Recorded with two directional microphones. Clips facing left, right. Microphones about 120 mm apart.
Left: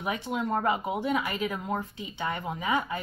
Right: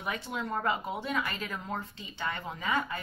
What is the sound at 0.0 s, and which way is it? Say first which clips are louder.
Speech: left 5 dB; 15° left (ahead or behind).